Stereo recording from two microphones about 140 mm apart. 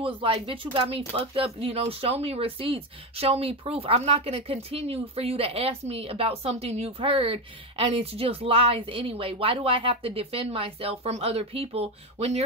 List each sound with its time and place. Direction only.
0.0 s speech: 40° right (ahead or behind)